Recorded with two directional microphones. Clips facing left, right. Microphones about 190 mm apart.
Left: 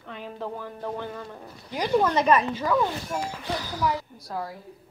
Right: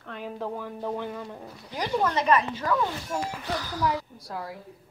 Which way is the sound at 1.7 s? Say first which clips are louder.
Left 4 dB; 15° left (ahead or behind).